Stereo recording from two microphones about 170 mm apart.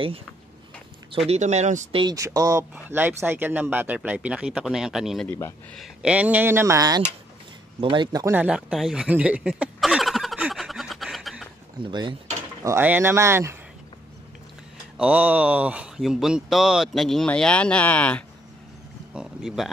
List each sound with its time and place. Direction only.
1.3 s speech: 40° right (ahead or behind)
2.0 s speech: 20° right (ahead or behind)
8.4 s a sound: 5° right (ahead or behind)
11.9 s speech: 25° right (ahead or behind)
12.6 s speech: 10° right (ahead or behind)
15.0 s speech: 10° right (ahead or behind); by 18.2 s 10° left (ahead or behind)
19.1 s speech: centre (ahead or behind)